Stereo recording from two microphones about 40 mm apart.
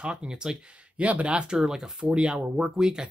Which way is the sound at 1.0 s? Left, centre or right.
Right.